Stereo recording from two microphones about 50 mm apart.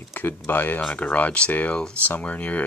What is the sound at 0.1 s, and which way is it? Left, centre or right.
Speech, left.